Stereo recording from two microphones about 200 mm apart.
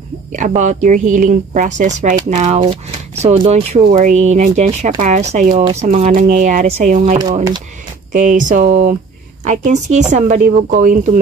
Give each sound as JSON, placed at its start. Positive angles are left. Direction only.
{"t": 0.3, "sound": "speech", "side_deg": -35}